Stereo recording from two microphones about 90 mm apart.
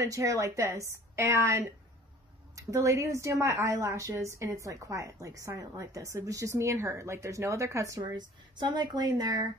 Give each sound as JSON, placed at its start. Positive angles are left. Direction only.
{"t": 0.0, "sound": "a woman's voice", "side_deg": -35}
{"t": 2.7, "sound": "a woman's voice", "side_deg": -35}
{"t": 8.0, "sound": "speech", "side_deg": -55}